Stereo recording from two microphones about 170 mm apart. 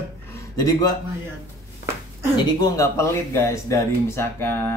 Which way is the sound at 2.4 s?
25° left (ahead or behind).